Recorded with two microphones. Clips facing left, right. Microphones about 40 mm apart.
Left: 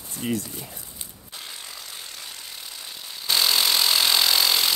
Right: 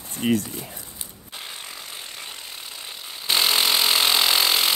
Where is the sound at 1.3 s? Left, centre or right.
Right.